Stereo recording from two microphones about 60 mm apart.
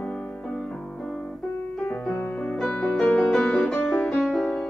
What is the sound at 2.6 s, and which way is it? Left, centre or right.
Music, centre.